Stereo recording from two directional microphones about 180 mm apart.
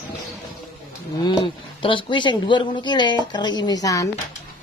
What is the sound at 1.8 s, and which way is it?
A woman's voice, 25° left (ahead or behind).